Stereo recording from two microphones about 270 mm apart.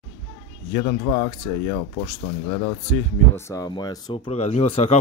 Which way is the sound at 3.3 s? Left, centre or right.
Centre.